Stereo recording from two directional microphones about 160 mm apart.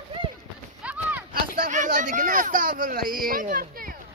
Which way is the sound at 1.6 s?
55° right (ahead or behind).